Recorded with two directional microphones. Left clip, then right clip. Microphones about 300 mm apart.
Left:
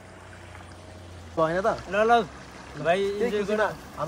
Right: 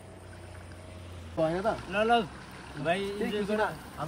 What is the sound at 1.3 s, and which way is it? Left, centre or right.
Speech, centre.